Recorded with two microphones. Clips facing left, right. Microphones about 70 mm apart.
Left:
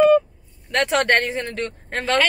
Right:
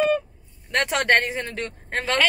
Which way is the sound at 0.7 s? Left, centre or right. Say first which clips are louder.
Left 2 dB; centre.